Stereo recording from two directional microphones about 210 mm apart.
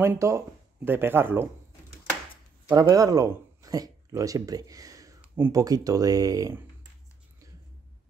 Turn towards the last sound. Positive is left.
turn(degrees=-15)  # may be behind; listen again after turning